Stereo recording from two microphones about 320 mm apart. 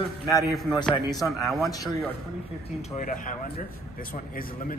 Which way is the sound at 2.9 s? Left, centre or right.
Left.